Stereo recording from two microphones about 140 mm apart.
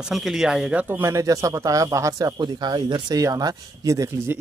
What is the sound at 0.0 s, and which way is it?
Speech, 5° right (ahead or behind).